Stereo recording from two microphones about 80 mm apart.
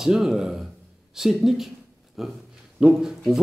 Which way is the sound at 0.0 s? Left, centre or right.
Centre.